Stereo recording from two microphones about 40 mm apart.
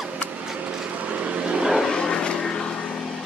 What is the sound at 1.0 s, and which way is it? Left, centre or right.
Vehicle, right.